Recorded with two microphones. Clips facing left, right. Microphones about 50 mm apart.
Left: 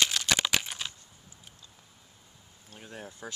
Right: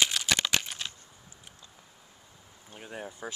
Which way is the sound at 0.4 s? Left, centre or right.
Centre.